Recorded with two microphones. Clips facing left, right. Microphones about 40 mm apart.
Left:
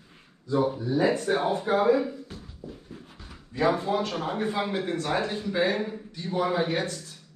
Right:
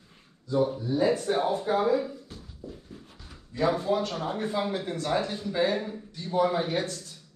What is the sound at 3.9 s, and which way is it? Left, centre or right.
Speech, left.